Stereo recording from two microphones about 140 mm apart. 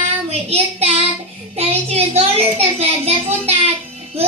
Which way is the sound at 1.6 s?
50° right (ahead or behind).